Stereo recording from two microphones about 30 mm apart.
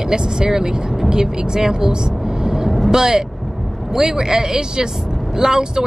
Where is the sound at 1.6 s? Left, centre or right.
Centre.